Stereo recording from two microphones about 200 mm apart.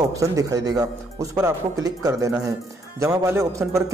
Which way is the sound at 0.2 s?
15° right (ahead or behind).